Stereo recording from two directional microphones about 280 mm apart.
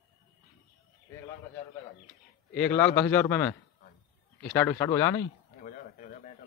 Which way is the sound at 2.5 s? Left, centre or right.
Centre.